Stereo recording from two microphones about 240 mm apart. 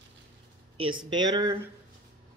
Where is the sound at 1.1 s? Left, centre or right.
Centre.